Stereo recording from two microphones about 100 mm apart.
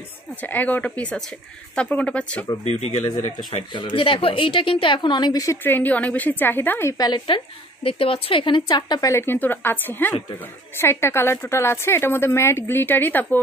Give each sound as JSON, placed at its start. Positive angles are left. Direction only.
{"t": 0.5, "sound": "speech", "side_deg": 15}
{"t": 2.6, "sound": "speech", "side_deg": 90}
{"t": 3.7, "sound": "a woman's voice", "side_deg": 60}
{"t": 5.6, "sound": "a woman's voice", "side_deg": 20}
{"t": 6.9, "sound": "speech", "side_deg": 40}
{"t": 7.2, "sound": "a woman's voice", "side_deg": 60}
{"t": 9.1, "sound": "a woman's voice", "side_deg": 20}